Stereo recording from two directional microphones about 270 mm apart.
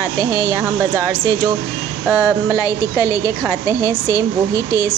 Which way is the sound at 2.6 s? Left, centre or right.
Centre.